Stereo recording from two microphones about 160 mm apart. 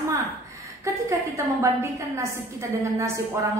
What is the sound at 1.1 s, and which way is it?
A woman's voice, 15° right (ahead or behind).